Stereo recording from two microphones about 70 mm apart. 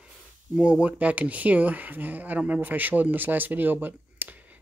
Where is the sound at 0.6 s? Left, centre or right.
Centre.